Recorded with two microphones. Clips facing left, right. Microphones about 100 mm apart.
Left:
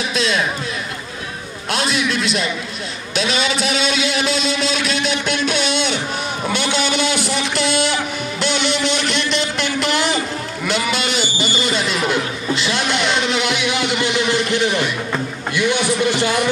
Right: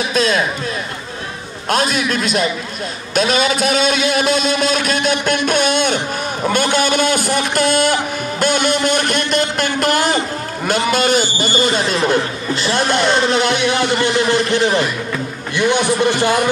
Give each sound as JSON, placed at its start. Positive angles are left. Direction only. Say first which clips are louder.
{"t": 0.1, "sound": "a man's voice", "louder": "right 5 dB", "side_deg": -45}
{"t": 1.7, "sound": "a man's voice", "louder": "right 3 dB", "side_deg": -45}